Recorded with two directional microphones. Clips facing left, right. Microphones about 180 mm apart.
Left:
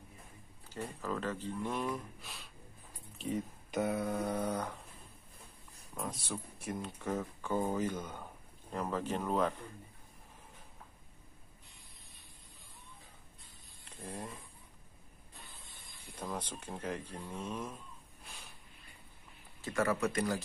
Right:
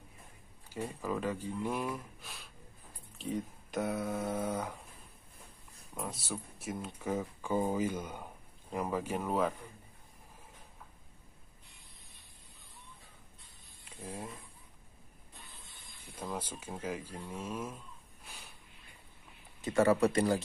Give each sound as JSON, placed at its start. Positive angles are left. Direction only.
{"t": 0.7, "sound": "speech", "side_deg": -10}
{"t": 5.9, "sound": "speech", "side_deg": -5}
{"t": 13.8, "sound": "a sound", "side_deg": -10}
{"t": 16.2, "sound": "speech", "side_deg": -5}
{"t": 19.6, "sound": "speech", "side_deg": -25}